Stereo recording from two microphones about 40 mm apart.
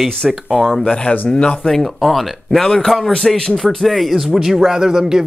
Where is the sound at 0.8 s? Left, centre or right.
Left.